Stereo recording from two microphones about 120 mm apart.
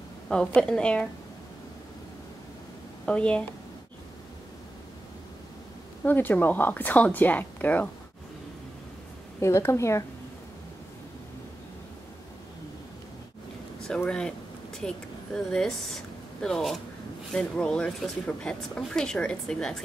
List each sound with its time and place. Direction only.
0.6 s a woman's voice: 5° left (ahead or behind)
3.1 s a woman's voice: 10° left (ahead or behind)
6.0 s a woman's voice: 15° left (ahead or behind)
9.4 s a woman's voice: 25° left (ahead or behind)
13.7 s a sound: 5° left (ahead or behind)
15.3 s speech: 5° left (ahead or behind)